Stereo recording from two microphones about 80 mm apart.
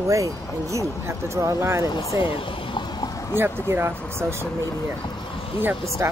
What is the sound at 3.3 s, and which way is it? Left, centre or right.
Speech, right.